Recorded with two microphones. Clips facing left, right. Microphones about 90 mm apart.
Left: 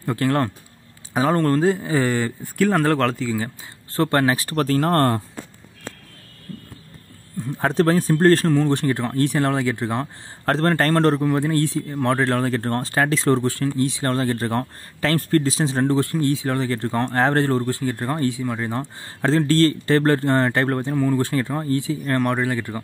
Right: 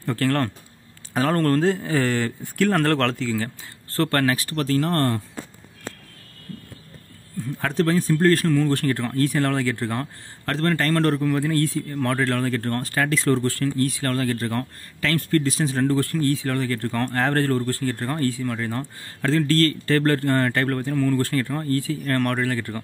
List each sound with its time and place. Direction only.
0.0 s speech: 15° left (ahead or behind)
4.4 s speech: 40° left (ahead or behind)
7.5 s speech: 30° left (ahead or behind); by 10.0 s 15° left (ahead or behind)
10.4 s speech: 35° left (ahead or behind)
11.1 s speech: 20° left (ahead or behind); by 15.5 s 35° left (ahead or behind)
15.5 s speech: 25° left (ahead or behind)